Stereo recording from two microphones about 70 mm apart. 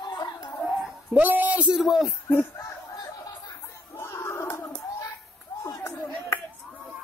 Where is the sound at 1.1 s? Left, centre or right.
Right.